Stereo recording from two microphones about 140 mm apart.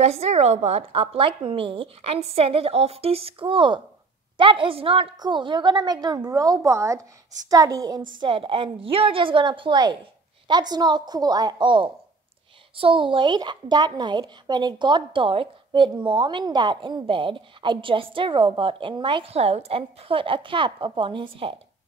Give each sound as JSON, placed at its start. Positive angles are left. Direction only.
{"t": 0.0, "sound": "a woman's voice", "side_deg": -50}
{"t": 8.2, "sound": "a woman's voice", "side_deg": -35}